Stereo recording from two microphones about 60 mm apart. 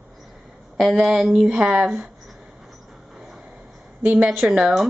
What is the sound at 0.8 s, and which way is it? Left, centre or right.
Speech, centre.